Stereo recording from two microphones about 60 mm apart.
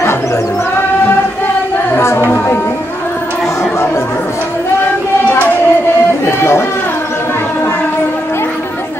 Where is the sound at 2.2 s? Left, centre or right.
Left.